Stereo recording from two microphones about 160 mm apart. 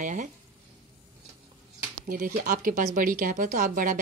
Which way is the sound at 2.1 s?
60° right (ahead or behind).